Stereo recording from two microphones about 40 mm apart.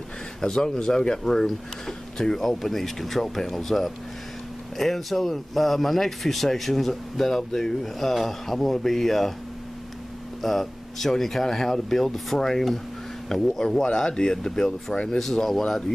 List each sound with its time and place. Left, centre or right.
0.4 s speech: centre
10.4 s speech: centre